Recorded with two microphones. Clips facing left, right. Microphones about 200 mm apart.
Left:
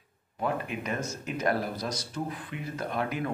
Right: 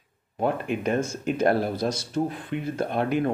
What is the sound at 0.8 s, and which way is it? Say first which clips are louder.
Speech: right 8 dB; 30° right (ahead or behind).